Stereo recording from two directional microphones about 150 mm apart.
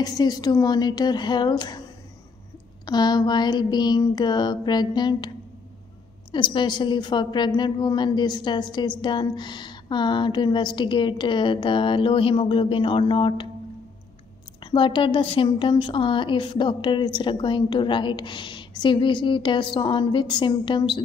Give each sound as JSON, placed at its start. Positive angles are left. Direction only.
{"t": 0.0, "sound": "a woman's voice", "side_deg": 25}
{"t": 2.9, "sound": "a woman's voice", "side_deg": 30}
{"t": 6.3, "sound": "a woman's voice", "side_deg": 30}
{"t": 14.6, "sound": "a woman's voice", "side_deg": 35}